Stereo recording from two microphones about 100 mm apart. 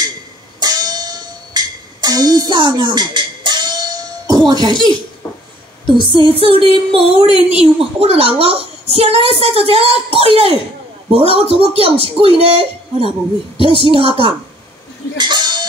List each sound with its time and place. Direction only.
0.6 s music: 45° right (ahead or behind)
4.5 s a child's voice: 45° right (ahead or behind)
5.9 s a woman's voice: 55° right (ahead or behind)
15.1 s a sound: 50° right (ahead or behind)